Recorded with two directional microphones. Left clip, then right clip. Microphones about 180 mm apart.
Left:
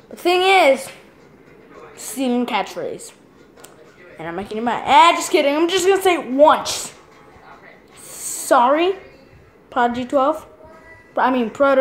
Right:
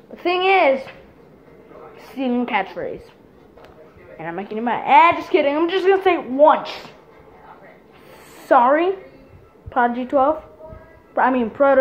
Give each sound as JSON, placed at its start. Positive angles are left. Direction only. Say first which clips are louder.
{"t": 0.1, "sound": "a woman's voice", "louder": "left 2 dB", "side_deg": 20}
{"t": 2.0, "sound": "a woman's voice", "louder": "left 2 dB", "side_deg": 20}
{"t": 4.2, "sound": "a woman's voice", "louder": "left 1 dB", "side_deg": 20}
{"t": 8.5, "sound": "a woman's voice", "louder": "even", "side_deg": 20}